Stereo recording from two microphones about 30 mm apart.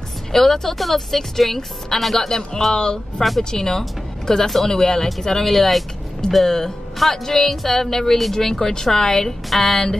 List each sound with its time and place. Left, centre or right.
0.3 s speech: centre
2.1 s speech: centre
3.2 s speech: centre
6.4 s speech: centre